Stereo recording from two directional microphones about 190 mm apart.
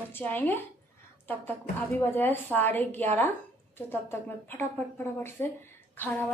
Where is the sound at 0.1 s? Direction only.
10° left (ahead or behind).